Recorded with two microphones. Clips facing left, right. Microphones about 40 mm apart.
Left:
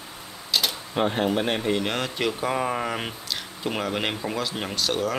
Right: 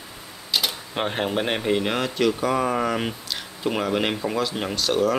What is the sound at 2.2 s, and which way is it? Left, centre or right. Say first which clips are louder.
Speech: right 5 dB; centre.